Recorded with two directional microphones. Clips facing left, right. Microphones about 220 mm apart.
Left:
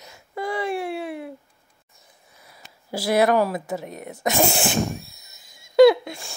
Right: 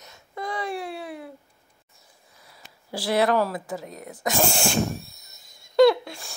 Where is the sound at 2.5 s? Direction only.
25° left (ahead or behind).